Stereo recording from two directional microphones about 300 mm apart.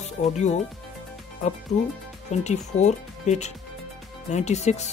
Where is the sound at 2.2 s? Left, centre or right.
Left.